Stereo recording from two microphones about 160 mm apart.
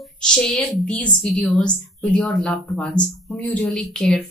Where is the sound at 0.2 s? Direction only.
5° left (ahead or behind).